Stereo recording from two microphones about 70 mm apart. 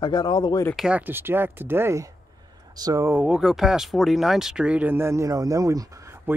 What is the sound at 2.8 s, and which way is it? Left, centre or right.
Speech, right.